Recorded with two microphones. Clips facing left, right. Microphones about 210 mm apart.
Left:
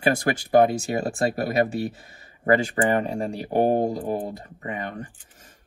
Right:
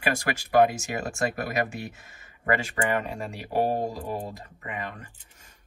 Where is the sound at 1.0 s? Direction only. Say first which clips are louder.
Left 3 dB; 35° left (ahead or behind).